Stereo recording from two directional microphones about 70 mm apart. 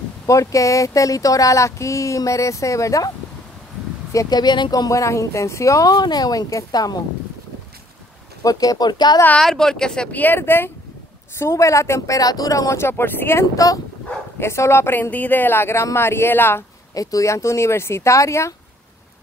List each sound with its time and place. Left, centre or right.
0.3 s speech: left
4.3 s speech: left
8.5 s speech: left
9.4 s speech: centre
10.1 s speech: left
11.3 s speech: left
12.2 s speech: left
15.0 s speech: left
16.9 s speech: left